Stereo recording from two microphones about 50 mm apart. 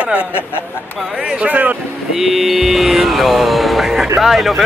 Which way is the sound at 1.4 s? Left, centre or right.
Right.